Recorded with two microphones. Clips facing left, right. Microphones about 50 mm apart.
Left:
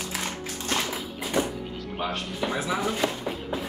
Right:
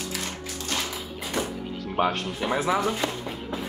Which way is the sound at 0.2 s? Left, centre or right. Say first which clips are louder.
Left 1 dB; left.